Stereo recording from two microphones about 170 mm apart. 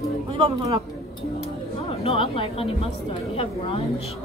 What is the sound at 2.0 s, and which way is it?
Speech, 35° left (ahead or behind).